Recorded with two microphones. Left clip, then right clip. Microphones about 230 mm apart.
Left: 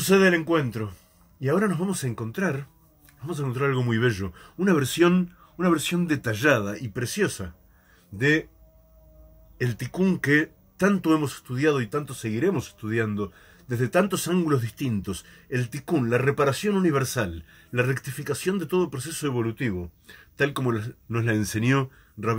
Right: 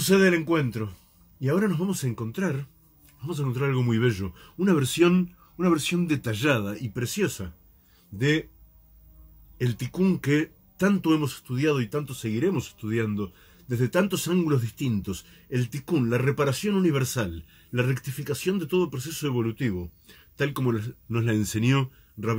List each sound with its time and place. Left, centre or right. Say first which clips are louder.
0.1 s a man's voice: left 2 dB; centre
9.8 s a man's voice: left 1 dB; centre